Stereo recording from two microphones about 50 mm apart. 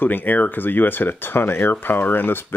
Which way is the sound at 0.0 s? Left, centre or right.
Left.